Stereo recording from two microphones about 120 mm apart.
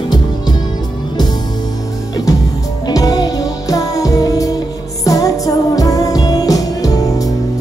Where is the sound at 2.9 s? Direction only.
30° left (ahead or behind).